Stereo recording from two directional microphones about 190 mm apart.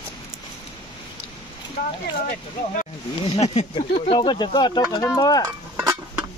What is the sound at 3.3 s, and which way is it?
Speech, 35° left (ahead or behind).